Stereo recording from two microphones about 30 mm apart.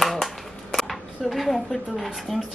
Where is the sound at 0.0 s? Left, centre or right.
Centre.